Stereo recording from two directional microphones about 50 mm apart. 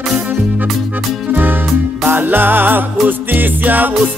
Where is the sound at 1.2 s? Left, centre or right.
Right.